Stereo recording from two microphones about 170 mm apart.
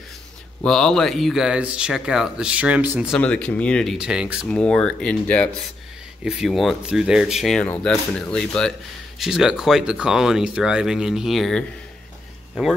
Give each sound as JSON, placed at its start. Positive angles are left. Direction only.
{"t": 0.7, "sound": "speech", "side_deg": 5}
{"t": 3.1, "sound": "speech", "side_deg": 5}